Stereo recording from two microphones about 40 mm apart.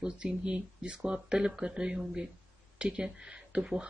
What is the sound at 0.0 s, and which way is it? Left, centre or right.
Speech, right.